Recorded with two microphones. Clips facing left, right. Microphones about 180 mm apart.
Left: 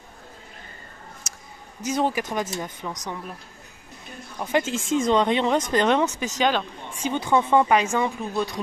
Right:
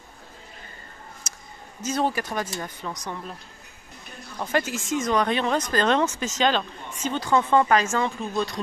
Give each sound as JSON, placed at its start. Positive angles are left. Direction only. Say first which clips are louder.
{"t": 1.8, "sound": "speech", "louder": "left 1 dB", "side_deg": 15}
{"t": 4.5, "sound": "speech", "louder": "left 2 dB", "side_deg": 15}
{"t": 4.7, "sound": "speech", "louder": "left 6 dB", "side_deg": 30}